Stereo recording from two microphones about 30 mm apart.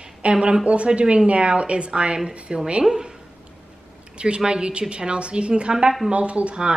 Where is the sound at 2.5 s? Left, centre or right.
Right.